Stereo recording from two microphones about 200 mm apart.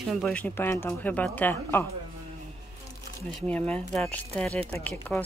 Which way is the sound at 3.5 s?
5° left (ahead or behind).